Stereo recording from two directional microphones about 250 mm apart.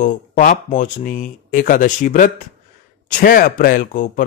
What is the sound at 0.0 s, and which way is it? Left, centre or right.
Speech, left.